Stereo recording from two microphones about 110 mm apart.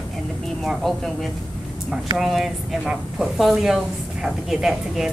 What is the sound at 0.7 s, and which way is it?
Speech, centre (ahead or behind).